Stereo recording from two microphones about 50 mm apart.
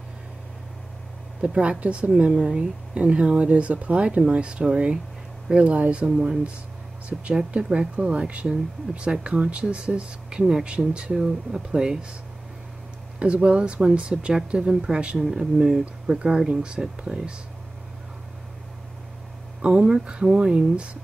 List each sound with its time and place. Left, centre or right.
1.4 s speech: right
13.2 s speech: right
15.1 s speech: centre
19.8 s speech: centre